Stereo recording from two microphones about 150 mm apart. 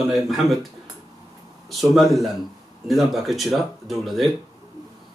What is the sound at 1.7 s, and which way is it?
Speech, centre (ahead or behind).